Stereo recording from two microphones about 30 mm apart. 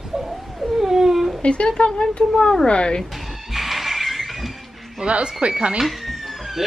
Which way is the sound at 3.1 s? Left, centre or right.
Centre.